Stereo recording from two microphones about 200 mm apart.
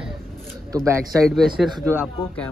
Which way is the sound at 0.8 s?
15° right (ahead or behind).